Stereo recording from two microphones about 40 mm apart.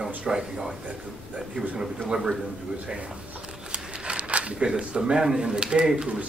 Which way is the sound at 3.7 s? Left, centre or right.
Right.